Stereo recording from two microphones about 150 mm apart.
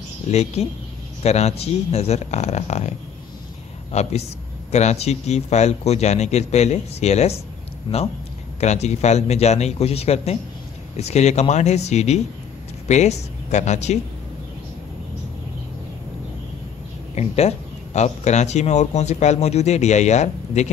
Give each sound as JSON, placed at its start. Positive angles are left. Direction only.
{"t": 0.3, "sound": "speech", "side_deg": 45}
{"t": 3.9, "sound": "speech", "side_deg": 50}
{"t": 7.9, "sound": "a man's voice", "side_deg": 30}
{"t": 8.5, "sound": "speech", "side_deg": 50}
{"t": 17.1, "sound": "speech", "side_deg": 45}